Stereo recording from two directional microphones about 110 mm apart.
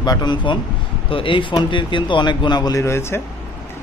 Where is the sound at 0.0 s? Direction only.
40° left (ahead or behind).